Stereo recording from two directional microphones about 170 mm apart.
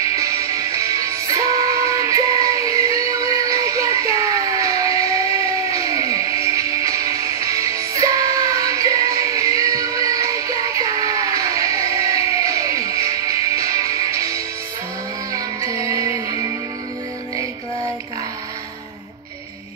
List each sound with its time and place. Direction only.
0.0 s music: 20° right (ahead or behind)
5.0 s a sound: 20° right (ahead or behind)
5.7 s music: 20° right (ahead or behind)
15.8 s music: 20° right (ahead or behind)